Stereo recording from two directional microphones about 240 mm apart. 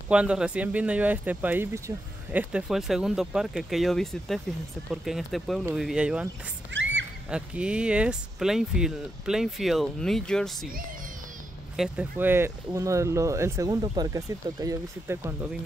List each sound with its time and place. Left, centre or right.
0.1 s speech: centre
6.7 s a sound: right
7.2 s speech: centre
11.7 s speech: centre